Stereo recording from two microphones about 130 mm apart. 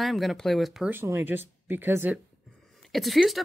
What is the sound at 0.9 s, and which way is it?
Speech, 20° right (ahead or behind).